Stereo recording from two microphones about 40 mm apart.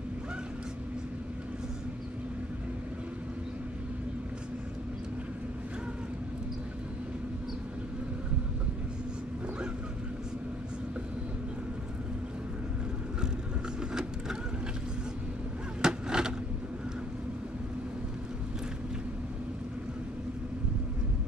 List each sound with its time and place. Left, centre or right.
15.8 s vehicle: centre